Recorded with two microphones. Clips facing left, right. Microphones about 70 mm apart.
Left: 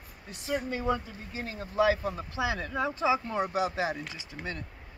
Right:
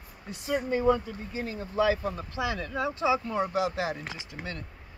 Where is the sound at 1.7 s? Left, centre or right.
Centre.